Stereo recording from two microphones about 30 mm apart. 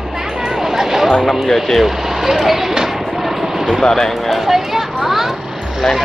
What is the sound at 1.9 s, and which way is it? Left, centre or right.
Speech, centre.